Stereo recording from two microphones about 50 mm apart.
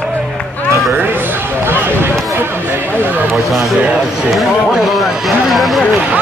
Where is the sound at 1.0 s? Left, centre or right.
Right.